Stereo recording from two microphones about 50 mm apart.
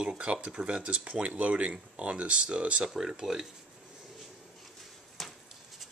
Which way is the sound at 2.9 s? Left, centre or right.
Centre.